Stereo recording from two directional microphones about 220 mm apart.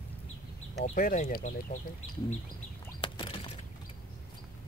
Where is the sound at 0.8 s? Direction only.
35° left (ahead or behind).